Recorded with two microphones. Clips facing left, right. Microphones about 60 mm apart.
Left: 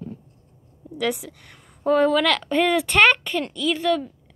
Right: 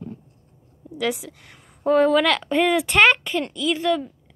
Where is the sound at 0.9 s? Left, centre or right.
Centre.